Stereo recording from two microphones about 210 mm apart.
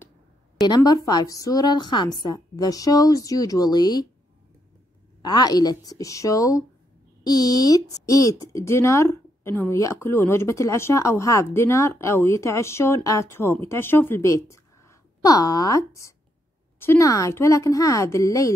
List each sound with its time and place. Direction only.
0.6 s speech: 20° left (ahead or behind)
5.2 s speech: 20° left (ahead or behind)